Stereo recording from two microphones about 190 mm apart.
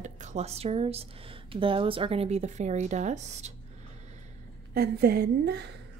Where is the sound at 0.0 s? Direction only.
40° right (ahead or behind).